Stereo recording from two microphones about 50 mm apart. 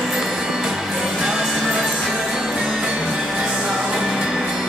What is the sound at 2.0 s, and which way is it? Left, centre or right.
Music, centre.